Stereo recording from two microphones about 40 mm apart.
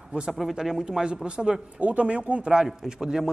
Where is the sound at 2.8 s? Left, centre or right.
Centre.